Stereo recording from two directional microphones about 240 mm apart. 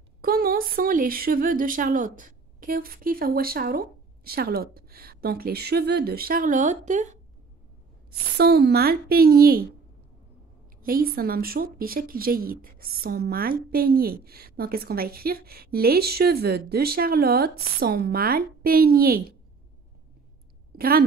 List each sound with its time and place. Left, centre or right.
0.2 s speech: right
8.1 s speech: right
10.8 s a woman's voice: right
20.7 s a woman's voice: right